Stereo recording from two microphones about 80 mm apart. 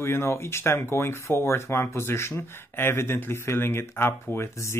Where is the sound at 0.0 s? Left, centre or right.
Left.